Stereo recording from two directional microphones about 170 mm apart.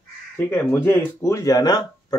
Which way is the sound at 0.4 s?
10° left (ahead or behind).